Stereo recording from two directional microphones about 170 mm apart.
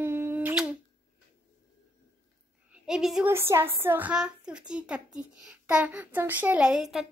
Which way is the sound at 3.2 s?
15° right (ahead or behind).